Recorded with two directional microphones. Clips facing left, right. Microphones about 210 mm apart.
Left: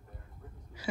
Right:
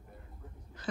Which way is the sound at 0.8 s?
10° left (ahead or behind).